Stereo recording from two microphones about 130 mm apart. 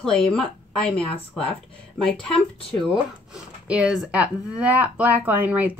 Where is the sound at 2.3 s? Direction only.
40° left (ahead or behind).